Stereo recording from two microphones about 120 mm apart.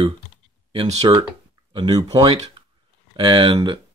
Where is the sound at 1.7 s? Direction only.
45° right (ahead or behind).